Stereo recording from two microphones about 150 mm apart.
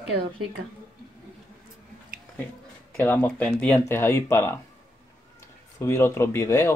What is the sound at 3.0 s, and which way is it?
Speech, 15° left (ahead or behind).